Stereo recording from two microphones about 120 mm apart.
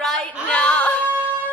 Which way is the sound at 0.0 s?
10° left (ahead or behind).